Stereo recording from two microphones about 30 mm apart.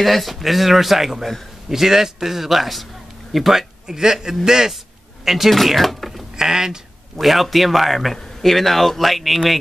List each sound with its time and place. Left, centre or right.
0.0 s a man's voice: centre
3.8 s a man's voice: centre
5.2 s speech: centre
6.3 s speech: centre
7.2 s speech: centre